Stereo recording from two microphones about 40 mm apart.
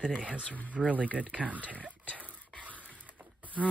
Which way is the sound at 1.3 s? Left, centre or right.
Right.